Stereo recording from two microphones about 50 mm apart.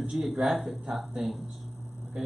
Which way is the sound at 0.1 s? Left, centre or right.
Centre.